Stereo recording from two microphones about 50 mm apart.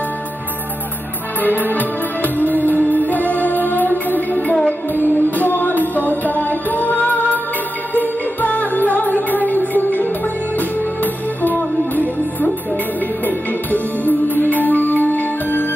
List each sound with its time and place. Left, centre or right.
1.4 s music: left
11.4 s music: left
13.7 s music: left